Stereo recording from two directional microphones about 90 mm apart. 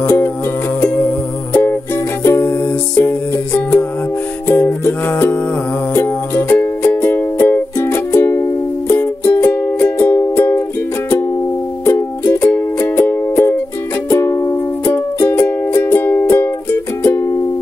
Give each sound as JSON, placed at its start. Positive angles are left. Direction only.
{"t": 0.0, "sound": "music", "side_deg": 25}
{"t": 12.3, "sound": "music", "side_deg": 30}
{"t": 14.4, "sound": "music", "side_deg": 40}
{"t": 15.1, "sound": "music", "side_deg": 25}